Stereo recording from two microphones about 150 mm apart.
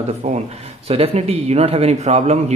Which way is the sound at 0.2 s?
55° right (ahead or behind).